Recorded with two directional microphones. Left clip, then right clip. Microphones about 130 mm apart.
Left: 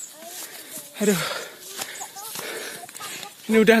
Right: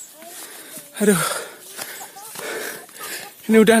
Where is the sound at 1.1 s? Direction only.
80° right.